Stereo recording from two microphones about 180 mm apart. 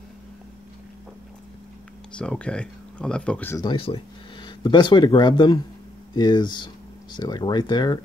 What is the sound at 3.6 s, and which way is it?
Speech, 30° left (ahead or behind).